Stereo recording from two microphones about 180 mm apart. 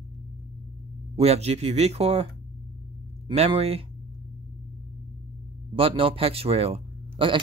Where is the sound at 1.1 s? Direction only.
35° right (ahead or behind).